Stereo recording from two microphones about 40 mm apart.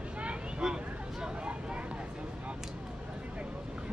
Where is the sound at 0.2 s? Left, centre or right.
Right.